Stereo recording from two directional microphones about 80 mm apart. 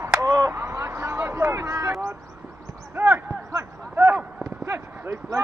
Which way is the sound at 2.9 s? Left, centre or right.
Right.